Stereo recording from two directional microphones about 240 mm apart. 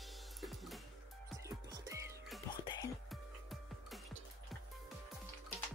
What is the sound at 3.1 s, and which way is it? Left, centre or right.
Music, centre.